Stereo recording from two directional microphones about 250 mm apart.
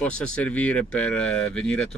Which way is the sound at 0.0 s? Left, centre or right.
Centre.